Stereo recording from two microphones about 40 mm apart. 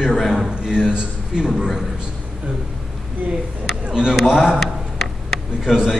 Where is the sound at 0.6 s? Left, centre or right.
Right.